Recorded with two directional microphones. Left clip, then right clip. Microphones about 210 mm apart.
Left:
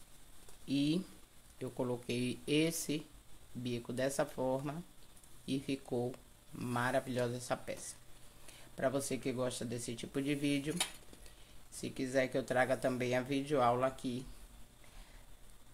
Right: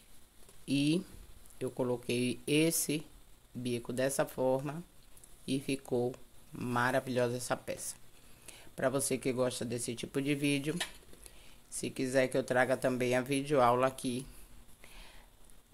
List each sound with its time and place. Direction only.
0.7 s speech: 25° right (ahead or behind)